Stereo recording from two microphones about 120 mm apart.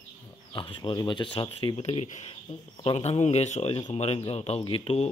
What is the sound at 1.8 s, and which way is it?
Speech, 60° left (ahead or behind).